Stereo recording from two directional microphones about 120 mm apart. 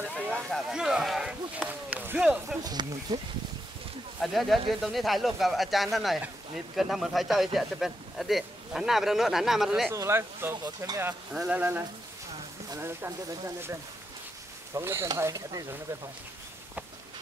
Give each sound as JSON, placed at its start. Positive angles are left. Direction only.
{"t": 0.5, "sound": "speech", "side_deg": -5}
{"t": 1.7, "sound": "speech", "side_deg": -15}
{"t": 2.6, "sound": "speech", "side_deg": -35}
{"t": 4.2, "sound": "speech", "side_deg": 0}
{"t": 9.8, "sound": "speech", "side_deg": -20}
{"t": 11.3, "sound": "speech", "side_deg": -10}